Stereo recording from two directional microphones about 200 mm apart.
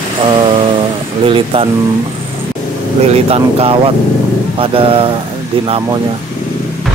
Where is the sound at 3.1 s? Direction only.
30° right (ahead or behind).